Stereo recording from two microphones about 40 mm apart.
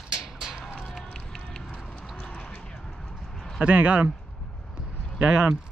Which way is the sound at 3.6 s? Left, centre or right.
Right.